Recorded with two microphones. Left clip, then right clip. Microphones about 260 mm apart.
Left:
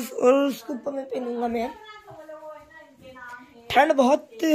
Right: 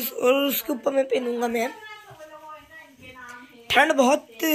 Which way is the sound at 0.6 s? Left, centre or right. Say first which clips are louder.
Right 8 dB; right.